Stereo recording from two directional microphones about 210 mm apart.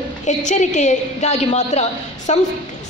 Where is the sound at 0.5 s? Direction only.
35° left (ahead or behind).